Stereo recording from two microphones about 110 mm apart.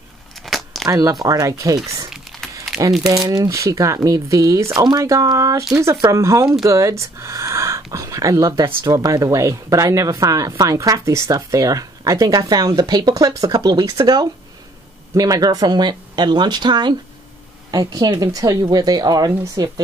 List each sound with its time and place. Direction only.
0.4 s a sound: centre (ahead or behind)
0.8 s speech: 30° right (ahead or behind)
2.0 s crumpling: 5° right (ahead or behind)
3.3 s speech: 30° right (ahead or behind)